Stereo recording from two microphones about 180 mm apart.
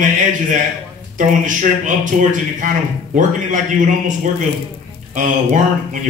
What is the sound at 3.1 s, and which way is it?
A man's voice, 45° right (ahead or behind).